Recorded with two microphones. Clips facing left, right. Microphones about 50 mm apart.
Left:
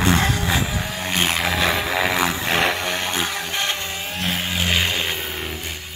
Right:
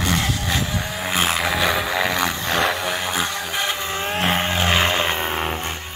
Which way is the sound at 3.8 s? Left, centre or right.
Right.